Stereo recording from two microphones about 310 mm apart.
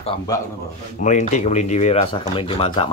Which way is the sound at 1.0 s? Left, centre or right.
Left.